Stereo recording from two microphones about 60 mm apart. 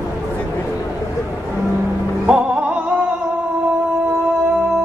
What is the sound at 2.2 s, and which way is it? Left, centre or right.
Music, centre.